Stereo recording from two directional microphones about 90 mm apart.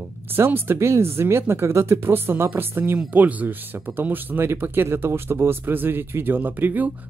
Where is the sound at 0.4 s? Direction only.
25° right (ahead or behind).